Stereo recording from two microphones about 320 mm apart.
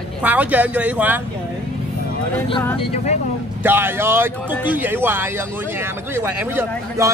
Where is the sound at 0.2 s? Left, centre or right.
Centre.